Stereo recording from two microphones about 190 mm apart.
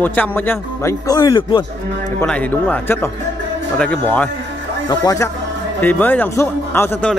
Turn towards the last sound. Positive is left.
turn(degrees=10)  # may be behind; listen again after turning